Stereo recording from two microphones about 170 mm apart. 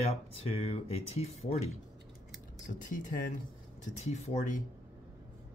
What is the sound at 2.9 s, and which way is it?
Speech, 50° left (ahead or behind).